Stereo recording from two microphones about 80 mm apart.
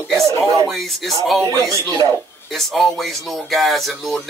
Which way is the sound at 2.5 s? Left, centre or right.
Centre.